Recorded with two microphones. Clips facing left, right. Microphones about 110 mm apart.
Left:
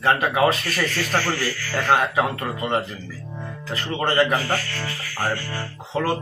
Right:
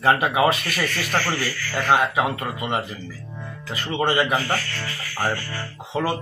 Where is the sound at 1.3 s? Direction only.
5° right (ahead or behind).